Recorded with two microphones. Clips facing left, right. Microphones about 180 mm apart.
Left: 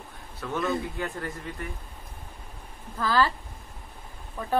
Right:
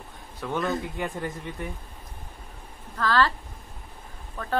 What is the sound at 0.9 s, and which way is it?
Speech, 15° right (ahead or behind).